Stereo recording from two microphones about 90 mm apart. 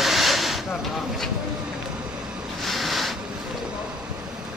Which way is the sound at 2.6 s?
Centre (ahead or behind).